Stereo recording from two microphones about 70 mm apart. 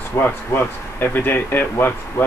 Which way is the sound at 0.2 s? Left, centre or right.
Left.